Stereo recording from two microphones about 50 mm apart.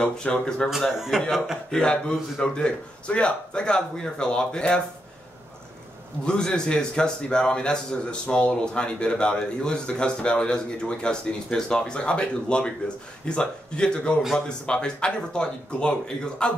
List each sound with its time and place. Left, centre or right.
0.0 s a man's voice: centre
0.7 s a man's voice: centre
1.7 s a man's voice: centre
6.2 s a man's voice: centre